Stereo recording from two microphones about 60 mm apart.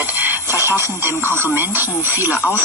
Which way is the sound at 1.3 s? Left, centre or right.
Right.